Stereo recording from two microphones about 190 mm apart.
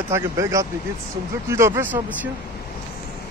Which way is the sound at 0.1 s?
15° right (ahead or behind).